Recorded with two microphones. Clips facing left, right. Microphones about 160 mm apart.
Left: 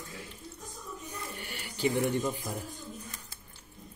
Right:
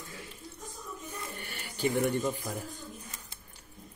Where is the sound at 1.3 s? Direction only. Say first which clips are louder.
Left 1 dB; 15° left (ahead or behind).